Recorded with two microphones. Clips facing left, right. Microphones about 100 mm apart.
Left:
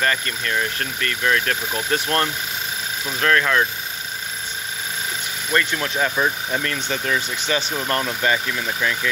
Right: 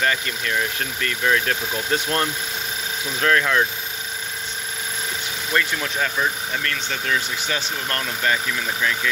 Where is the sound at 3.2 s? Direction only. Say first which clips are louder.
Left 1 dB; 10° right (ahead or behind).